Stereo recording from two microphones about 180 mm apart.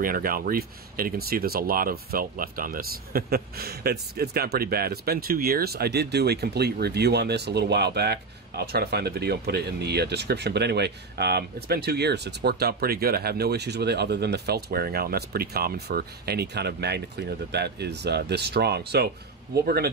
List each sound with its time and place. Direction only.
0.0 s speech: 55° right (ahead or behind)